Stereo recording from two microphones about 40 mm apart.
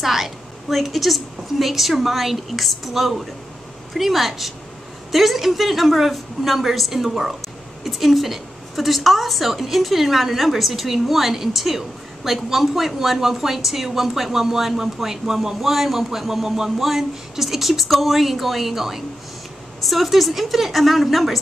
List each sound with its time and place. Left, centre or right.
0.0 s a woman's voice: centre